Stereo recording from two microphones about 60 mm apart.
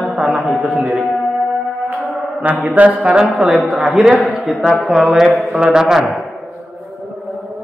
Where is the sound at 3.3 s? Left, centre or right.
Centre.